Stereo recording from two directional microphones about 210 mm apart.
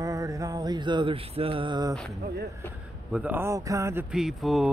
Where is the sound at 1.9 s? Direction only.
5° left (ahead or behind).